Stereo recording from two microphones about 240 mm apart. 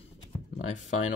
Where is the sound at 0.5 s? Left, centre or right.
Left.